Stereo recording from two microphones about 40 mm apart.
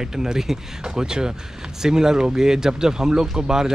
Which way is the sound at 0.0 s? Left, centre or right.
Centre.